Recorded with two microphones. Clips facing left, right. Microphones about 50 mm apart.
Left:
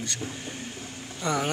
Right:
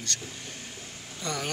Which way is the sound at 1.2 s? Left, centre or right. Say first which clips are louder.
Left 6 dB; centre.